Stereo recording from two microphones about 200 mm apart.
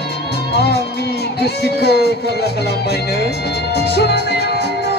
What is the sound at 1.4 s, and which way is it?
Music, 55° left (ahead or behind).